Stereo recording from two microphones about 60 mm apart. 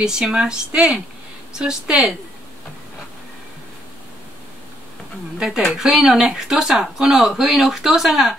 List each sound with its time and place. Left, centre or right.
0.0 s speech: centre
5.6 s speech: centre